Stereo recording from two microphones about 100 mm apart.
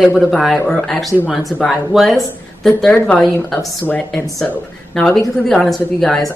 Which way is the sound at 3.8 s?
15° left (ahead or behind).